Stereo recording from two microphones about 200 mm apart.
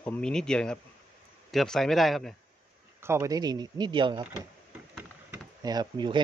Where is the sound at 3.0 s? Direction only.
15° right (ahead or behind).